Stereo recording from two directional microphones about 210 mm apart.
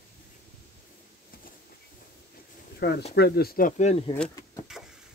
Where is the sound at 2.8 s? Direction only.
50° left (ahead or behind).